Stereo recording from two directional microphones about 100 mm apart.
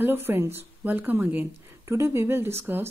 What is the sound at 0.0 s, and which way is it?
Speech, 20° right (ahead or behind).